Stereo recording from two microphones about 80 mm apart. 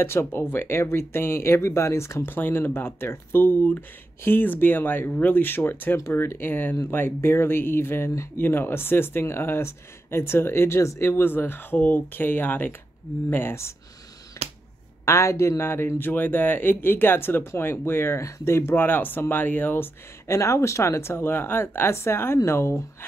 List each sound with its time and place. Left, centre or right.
0.0 s speech: left
15.0 s speech: left
20.2 s speech: left